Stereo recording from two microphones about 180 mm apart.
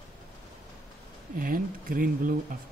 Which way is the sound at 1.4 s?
50° right (ahead or behind).